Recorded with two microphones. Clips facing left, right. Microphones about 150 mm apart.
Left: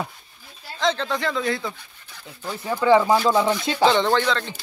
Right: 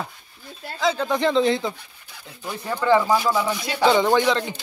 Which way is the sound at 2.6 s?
15° left (ahead or behind).